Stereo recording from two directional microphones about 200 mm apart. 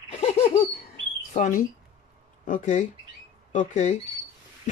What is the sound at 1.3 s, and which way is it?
Speech, 35° left (ahead or behind).